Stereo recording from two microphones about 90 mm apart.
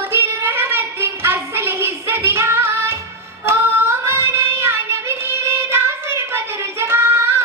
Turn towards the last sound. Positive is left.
turn(degrees=-25)  # may be behind; listen again after turning